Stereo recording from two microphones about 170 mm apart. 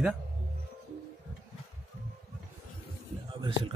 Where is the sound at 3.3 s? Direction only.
30° right (ahead or behind).